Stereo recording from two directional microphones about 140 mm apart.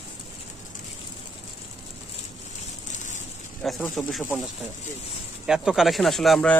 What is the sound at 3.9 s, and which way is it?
Speech, centre (ahead or behind).